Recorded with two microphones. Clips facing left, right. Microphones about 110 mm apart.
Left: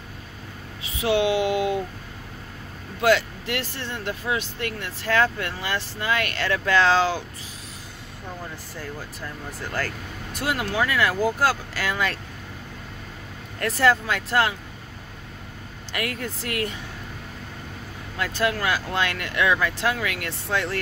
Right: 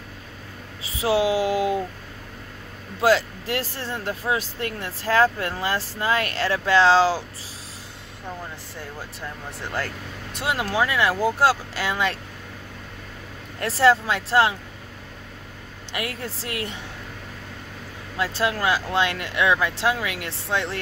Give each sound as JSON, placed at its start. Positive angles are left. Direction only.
{"t": 0.8, "sound": "speech", "side_deg": -30}
{"t": 3.0, "sound": "speech", "side_deg": -35}
{"t": 10.3, "sound": "speech", "side_deg": -25}
{"t": 13.6, "sound": "speech", "side_deg": -30}
{"t": 15.9, "sound": "speech", "side_deg": -25}
{"t": 18.1, "sound": "speech", "side_deg": -25}